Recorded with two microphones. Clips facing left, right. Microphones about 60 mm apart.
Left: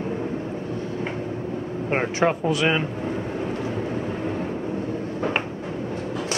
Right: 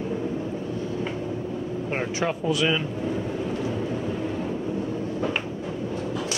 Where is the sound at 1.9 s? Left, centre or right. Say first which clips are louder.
Left 6 dB; left.